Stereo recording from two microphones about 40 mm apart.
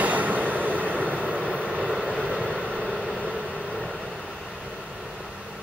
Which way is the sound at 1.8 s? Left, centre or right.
Centre.